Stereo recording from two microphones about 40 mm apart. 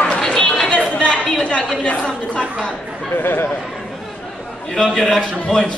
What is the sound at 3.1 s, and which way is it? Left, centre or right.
Speech, left.